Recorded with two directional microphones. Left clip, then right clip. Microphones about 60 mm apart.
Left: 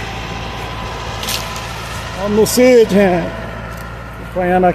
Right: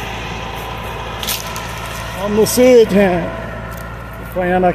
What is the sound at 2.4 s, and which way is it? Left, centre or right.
Speech, left.